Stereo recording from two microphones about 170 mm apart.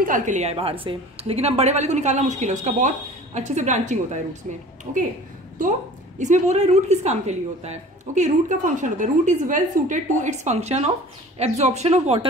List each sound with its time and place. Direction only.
0.0 s a woman's voice: 50° right (ahead or behind)